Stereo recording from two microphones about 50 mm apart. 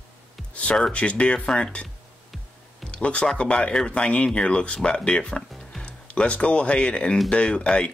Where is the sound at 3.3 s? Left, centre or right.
Left.